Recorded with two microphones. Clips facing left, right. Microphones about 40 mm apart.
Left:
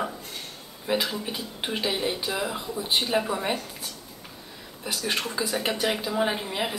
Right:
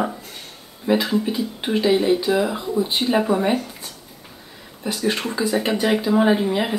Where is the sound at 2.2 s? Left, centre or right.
Right.